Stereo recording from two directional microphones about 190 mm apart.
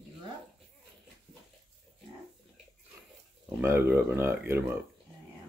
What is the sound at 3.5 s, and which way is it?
Speech, 15° right (ahead or behind).